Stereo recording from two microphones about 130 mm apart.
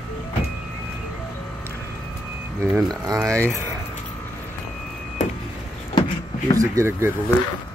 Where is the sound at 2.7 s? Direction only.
30° right (ahead or behind).